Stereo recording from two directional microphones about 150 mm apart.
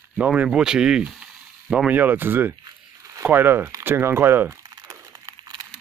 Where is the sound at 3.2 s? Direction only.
15° right (ahead or behind).